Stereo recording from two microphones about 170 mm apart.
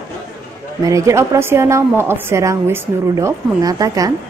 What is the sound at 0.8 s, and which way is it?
A woman's voice, 20° right (ahead or behind).